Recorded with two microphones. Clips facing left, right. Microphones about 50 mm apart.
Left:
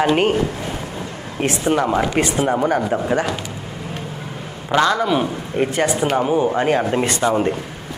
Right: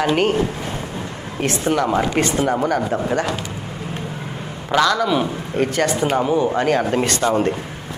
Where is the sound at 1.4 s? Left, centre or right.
Left.